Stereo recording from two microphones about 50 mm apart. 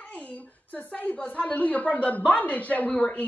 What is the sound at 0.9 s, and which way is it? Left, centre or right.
Speech, left.